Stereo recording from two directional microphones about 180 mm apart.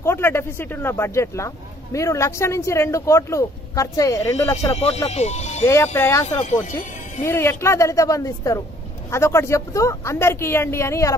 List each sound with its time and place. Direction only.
0.0 s speech: 15° left (ahead or behind)
4.7 s speech: 35° left (ahead or behind)
5.9 s speech: 15° left (ahead or behind)
7.2 s speech: 15° left (ahead or behind)